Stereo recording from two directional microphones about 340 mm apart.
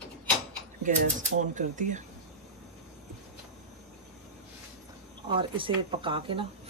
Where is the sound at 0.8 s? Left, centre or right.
Right.